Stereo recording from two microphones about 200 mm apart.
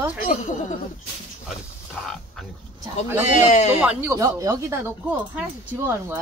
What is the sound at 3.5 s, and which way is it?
Speech, 35° left (ahead or behind).